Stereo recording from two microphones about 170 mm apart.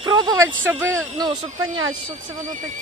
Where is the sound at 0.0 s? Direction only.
25° right (ahead or behind).